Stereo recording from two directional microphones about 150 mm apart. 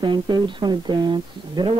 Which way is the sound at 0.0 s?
30° right (ahead or behind).